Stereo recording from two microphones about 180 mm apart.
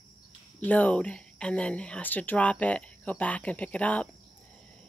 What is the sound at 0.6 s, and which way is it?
Speech, 10° left (ahead or behind).